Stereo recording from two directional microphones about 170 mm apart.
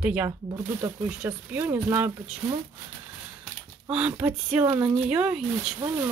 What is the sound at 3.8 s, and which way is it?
Speech, 5° right (ahead or behind).